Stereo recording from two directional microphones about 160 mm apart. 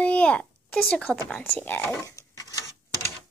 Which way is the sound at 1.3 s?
15° left (ahead or behind).